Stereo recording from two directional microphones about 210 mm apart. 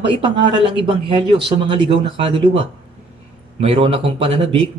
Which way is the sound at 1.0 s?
25° right (ahead or behind).